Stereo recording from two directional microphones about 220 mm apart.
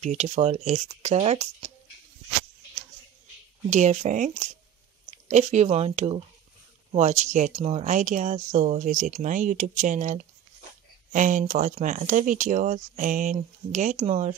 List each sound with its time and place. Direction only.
0.0 s speech: 30° right (ahead or behind)
3.7 s speech: 35° right (ahead or behind)